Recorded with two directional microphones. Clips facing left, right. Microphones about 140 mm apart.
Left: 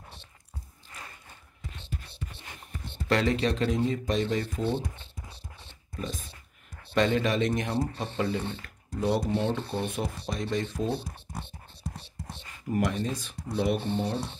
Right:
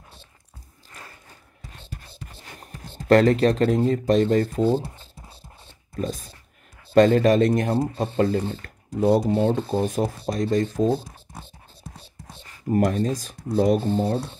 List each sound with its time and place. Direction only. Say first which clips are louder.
1.7 s whispering: left 1 dB; 40° right (ahead or behind)
4.1 s speech: right 9 dB; 45° right (ahead or behind)
12.4 s speech: right 7 dB; 40° right (ahead or behind)